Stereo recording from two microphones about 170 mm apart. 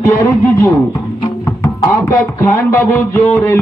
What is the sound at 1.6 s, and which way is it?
Music, 15° left (ahead or behind).